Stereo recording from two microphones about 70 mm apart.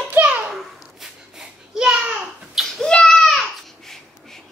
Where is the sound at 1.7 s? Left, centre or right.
Centre.